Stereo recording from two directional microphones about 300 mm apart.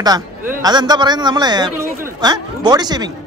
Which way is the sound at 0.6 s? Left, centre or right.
Centre.